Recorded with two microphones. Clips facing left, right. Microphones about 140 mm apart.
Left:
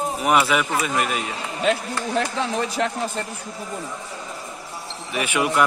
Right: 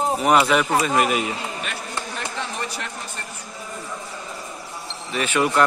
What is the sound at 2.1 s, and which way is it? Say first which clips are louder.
Speech: left 9 dB; 90° left.